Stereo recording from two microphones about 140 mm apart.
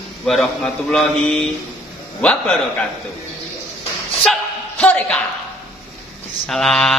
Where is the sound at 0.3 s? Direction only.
5° left (ahead or behind).